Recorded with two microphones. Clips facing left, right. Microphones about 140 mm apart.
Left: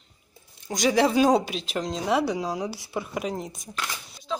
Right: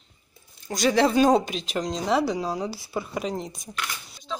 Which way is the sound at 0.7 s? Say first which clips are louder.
Right 1 dB; 10° left (ahead or behind).